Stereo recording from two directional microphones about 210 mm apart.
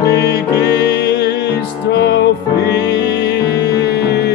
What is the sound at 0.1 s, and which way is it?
Music, 50° left (ahead or behind).